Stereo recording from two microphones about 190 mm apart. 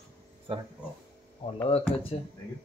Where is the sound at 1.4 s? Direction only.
30° left (ahead or behind).